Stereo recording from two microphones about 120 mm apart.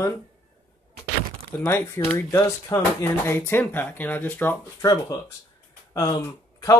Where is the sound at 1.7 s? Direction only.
15° left (ahead or behind).